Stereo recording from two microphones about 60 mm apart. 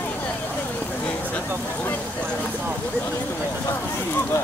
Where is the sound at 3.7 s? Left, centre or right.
Left.